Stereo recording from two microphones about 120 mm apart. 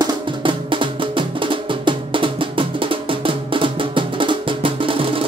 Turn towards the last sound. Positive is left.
turn(degrees=-45)  # may be behind; listen again after turning